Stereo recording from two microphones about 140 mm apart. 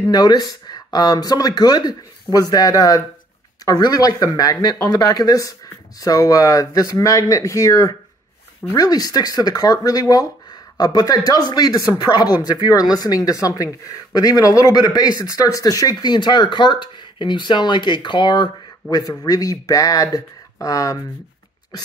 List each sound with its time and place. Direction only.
0.0 s speech: 30° left (ahead or behind)